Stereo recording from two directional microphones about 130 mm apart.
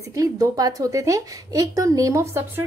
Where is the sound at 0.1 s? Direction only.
25° right (ahead or behind).